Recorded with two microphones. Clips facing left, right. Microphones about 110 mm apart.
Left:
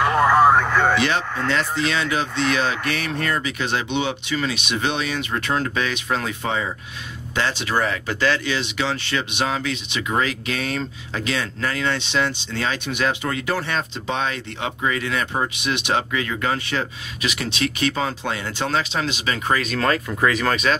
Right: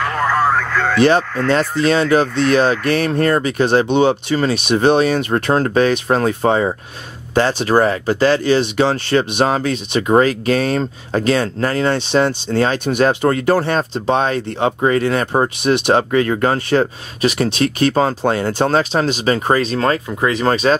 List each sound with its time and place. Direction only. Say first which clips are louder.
0.0 s radio: left 2 dB; 15° left (ahead or behind)
1.5 s speech: right 8 dB; 40° right (ahead or behind)